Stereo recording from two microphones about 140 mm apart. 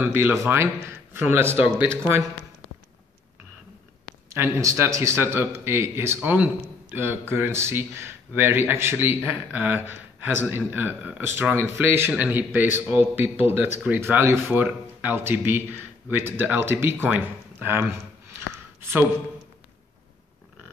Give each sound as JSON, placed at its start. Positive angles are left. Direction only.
{"t": 0.0, "sound": "speech", "side_deg": -15}
{"t": 4.3, "sound": "speech", "side_deg": -20}
{"t": 18.8, "sound": "a sound", "side_deg": -15}